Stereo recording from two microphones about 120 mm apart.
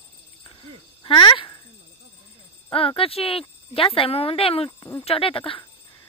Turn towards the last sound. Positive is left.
turn(degrees=50)  # may be behind; listen again after turning